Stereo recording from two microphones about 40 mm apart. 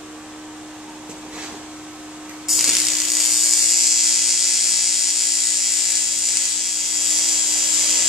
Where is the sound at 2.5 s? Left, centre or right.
Centre.